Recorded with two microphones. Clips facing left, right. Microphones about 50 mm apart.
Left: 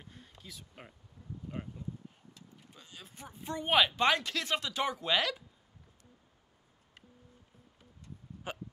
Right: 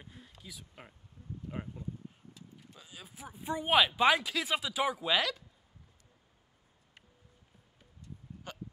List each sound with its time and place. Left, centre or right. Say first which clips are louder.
0.0 s a sound: right 1 dB; centre
2.8 s speech: right 1 dB; centre
8.5 s hiccup: left 6 dB; centre